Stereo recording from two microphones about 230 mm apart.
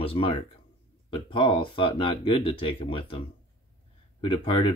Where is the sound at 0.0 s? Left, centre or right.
Left.